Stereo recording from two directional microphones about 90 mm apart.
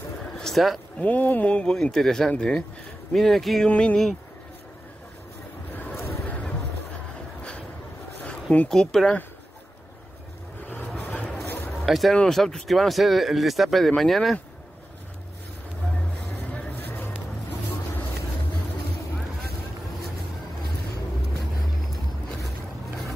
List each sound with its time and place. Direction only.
0.4 s speech: centre (ahead or behind)
0.9 s a man's voice: 15° left (ahead or behind); by 3.6 s centre (ahead or behind)
3.6 s a man's voice: 10° left (ahead or behind)
5.7 s boat: 20° left (ahead or behind)
8.3 s speech: 10° left (ahead or behind)
10.9 s a sound: centre (ahead or behind)
11.8 s speech: centre (ahead or behind)
16.5 s vehicle: 20° left (ahead or behind)